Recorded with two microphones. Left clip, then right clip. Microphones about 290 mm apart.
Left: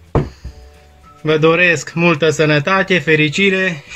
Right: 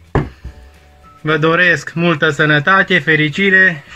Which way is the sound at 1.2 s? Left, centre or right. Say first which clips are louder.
Even; centre.